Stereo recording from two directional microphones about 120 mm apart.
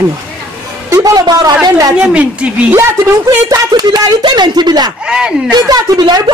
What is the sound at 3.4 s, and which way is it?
A man's voice, 35° right (ahead or behind).